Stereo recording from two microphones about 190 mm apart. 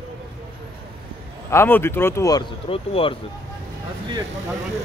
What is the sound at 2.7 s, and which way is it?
Speech, 30° left (ahead or behind).